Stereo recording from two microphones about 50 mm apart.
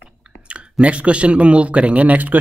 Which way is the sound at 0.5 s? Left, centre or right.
Right.